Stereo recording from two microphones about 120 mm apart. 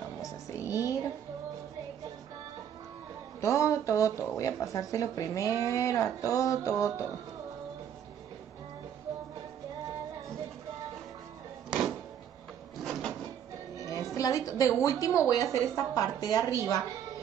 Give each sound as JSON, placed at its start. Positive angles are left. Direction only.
{"t": 0.2, "sound": "music", "side_deg": 25}
{"t": 3.3, "sound": "a sound", "side_deg": 25}
{"t": 4.4, "sound": "speech", "side_deg": 25}
{"t": 11.7, "sound": "music", "side_deg": -5}
{"t": 12.8, "sound": "a sound", "side_deg": 5}
{"t": 13.8, "sound": "speech", "side_deg": 30}